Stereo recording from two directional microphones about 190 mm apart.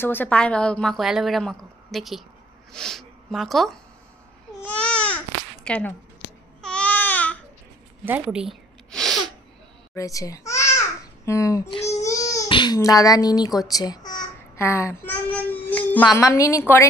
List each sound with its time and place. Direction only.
0.0 s a woman's voice: 10° left (ahead or behind)
4.6 s baby cry: 5° left (ahead or behind)
8.0 s zipper: 5° right (ahead or behind)
9.9 s a woman's voice: 15° left (ahead or behind)
11.9 s baby cry: 15° left (ahead or behind)
16.1 s a woman's voice: 15° left (ahead or behind)